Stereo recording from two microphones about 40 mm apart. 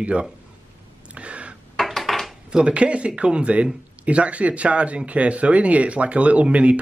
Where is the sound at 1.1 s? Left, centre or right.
Right.